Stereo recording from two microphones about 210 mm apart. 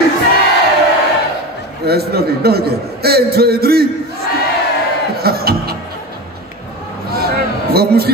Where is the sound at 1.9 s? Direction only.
50° right (ahead or behind).